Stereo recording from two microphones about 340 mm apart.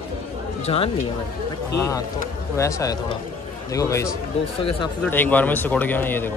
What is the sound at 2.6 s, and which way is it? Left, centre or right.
A man's voice, centre.